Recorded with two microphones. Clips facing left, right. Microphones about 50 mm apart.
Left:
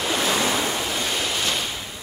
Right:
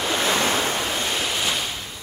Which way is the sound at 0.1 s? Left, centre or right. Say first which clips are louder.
Right 1 dB; right.